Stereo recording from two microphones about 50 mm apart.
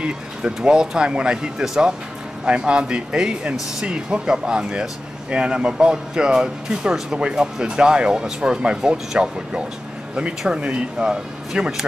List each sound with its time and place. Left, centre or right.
0.0 s speech: centre